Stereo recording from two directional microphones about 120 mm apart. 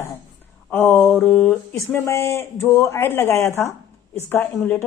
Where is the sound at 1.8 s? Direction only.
20° left (ahead or behind).